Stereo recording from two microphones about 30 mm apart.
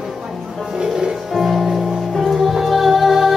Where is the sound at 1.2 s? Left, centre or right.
Centre.